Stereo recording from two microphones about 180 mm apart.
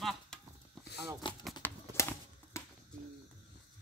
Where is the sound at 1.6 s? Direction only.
15° left (ahead or behind).